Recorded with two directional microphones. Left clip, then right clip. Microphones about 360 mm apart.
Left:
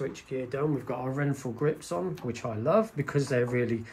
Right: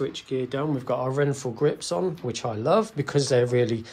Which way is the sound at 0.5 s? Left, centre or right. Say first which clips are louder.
Right 2 dB; centre.